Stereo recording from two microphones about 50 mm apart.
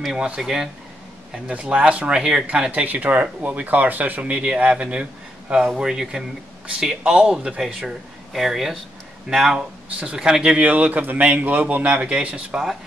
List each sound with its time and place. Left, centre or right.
0.4 s a man's voice: centre
1.5 s speech: right
5.8 s a man's voice: centre
7.6 s a man's voice: centre
9.9 s speech: right
10.6 s speech: right